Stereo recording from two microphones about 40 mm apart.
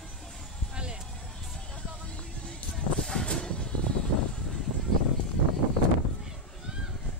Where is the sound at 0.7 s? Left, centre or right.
Right.